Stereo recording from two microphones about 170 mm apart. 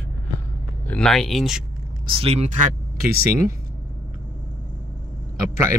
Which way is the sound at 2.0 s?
35° right (ahead or behind).